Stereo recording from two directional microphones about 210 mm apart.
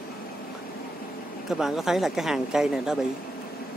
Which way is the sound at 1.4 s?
Centre (ahead or behind).